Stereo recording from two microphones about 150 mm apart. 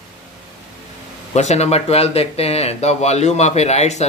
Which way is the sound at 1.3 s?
45° left (ahead or behind).